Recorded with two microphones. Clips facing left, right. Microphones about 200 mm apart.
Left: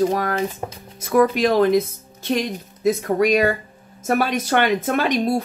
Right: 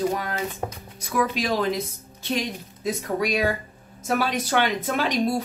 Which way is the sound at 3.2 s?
50° left (ahead or behind).